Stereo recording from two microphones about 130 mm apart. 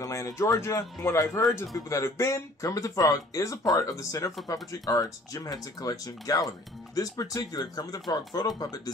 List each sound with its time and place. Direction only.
0.0 s speech: 25° left (ahead or behind)